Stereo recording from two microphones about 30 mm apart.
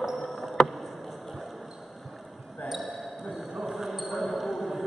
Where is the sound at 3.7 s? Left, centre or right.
Centre.